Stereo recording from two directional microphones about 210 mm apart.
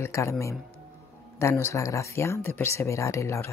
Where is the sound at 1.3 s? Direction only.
15° left (ahead or behind).